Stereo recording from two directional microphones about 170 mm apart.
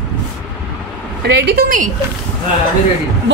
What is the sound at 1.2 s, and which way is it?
Speech, 70° right (ahead or behind).